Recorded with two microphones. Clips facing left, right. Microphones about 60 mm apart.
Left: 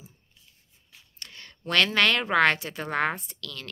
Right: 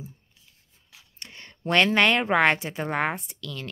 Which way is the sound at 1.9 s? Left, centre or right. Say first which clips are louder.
Right 3 dB; centre.